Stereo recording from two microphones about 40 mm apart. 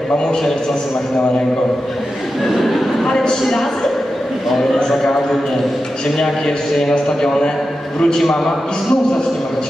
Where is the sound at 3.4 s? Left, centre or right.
Centre.